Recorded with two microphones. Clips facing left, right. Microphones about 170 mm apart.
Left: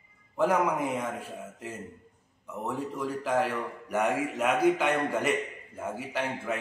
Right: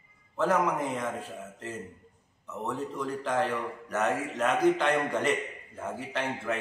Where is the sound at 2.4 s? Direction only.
10° left (ahead or behind).